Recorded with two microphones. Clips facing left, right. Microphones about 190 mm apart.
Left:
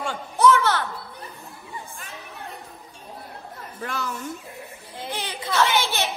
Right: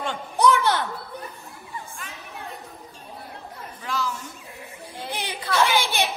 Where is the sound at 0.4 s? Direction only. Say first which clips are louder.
Left 1 dB; 15° right (ahead or behind).